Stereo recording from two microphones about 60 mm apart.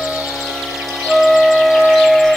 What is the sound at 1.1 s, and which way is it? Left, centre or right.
Music, centre.